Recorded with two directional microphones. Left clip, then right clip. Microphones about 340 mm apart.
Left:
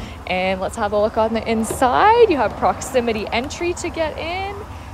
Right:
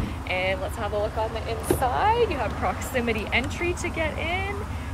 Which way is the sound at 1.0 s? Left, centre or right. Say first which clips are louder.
Left 9 dB; centre.